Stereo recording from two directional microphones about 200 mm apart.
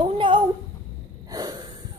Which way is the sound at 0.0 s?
25° right (ahead or behind).